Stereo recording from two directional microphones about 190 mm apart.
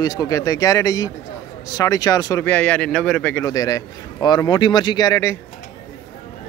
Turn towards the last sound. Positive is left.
turn(degrees=15)  # may be behind; listen again after turning